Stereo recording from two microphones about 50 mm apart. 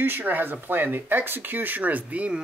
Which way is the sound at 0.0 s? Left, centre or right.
Right.